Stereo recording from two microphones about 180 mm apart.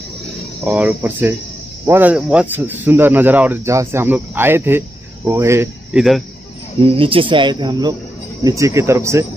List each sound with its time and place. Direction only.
0.7 s speech: 5° right (ahead or behind)
5.9 s speech: centre (ahead or behind)
6.8 s speech: 30° right (ahead or behind)